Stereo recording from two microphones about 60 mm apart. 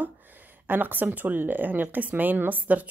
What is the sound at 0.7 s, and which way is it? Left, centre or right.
Speech, right.